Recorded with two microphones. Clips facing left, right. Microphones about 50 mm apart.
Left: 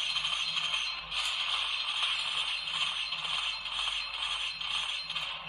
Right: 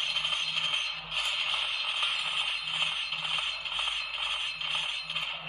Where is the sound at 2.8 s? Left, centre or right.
Right.